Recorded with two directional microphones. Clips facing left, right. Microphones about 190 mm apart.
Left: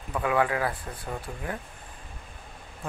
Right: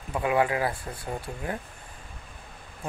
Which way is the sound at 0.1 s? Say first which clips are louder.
Right 1 dB; 20° right (ahead or behind).